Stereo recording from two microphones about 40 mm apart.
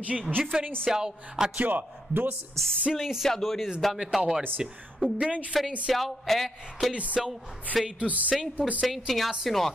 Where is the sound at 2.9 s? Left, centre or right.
Centre.